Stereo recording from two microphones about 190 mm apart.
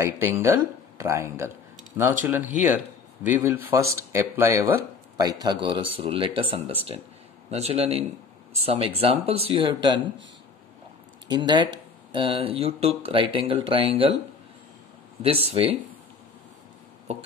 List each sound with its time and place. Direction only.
0.0 s speech: 15° right (ahead or behind)
11.2 s speech: 20° right (ahead or behind)
15.2 s speech: 30° right (ahead or behind)